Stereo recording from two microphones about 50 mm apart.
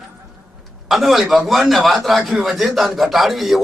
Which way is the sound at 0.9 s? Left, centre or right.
Centre.